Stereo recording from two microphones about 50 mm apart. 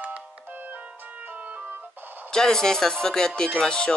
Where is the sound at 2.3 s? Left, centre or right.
Centre.